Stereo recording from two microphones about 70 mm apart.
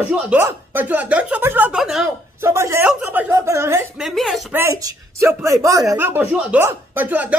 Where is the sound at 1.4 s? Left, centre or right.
Right.